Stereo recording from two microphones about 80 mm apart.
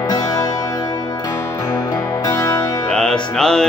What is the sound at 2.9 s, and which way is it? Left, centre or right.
Music, centre.